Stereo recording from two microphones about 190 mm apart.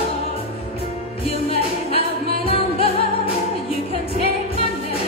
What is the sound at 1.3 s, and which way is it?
Music, 30° left (ahead or behind).